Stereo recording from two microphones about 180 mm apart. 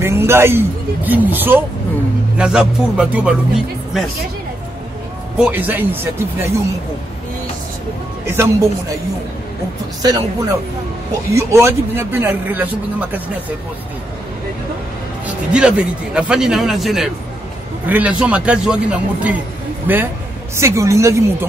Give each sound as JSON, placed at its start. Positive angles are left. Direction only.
{"t": 0.0, "sound": "a man's voice", "side_deg": -15}
{"t": 5.4, "sound": "a man's voice", "side_deg": -10}
{"t": 8.3, "sound": "a man's voice", "side_deg": -15}
{"t": 10.0, "sound": "a man's voice", "side_deg": -20}
{"t": 15.2, "sound": "a man's voice", "side_deg": -5}